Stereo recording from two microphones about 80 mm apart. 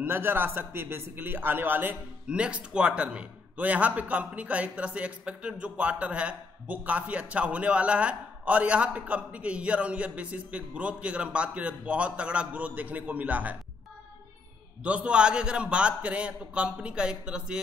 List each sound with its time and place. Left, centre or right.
0.0 s a man's voice: right
2.2 s speech: centre
14.8 s speech: centre